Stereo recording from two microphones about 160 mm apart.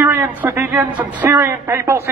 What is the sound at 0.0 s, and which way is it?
A man's voice, 15° right (ahead or behind).